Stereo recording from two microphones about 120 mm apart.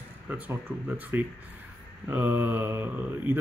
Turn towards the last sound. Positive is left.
turn(degrees=-15)  # may be behind; listen again after turning